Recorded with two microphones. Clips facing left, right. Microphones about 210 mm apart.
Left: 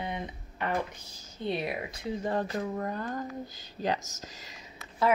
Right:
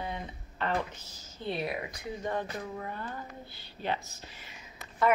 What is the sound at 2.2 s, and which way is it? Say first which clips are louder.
Speech: left 3 dB; 35° left (ahead or behind).